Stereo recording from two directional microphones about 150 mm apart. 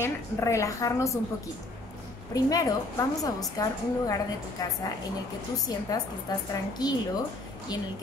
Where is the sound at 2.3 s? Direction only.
25° left (ahead or behind).